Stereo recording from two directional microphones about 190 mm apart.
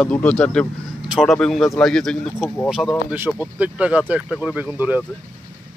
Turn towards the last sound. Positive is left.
turn(degrees=-10)  # may be behind; listen again after turning